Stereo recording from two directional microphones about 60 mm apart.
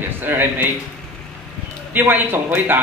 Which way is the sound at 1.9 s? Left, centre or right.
Right.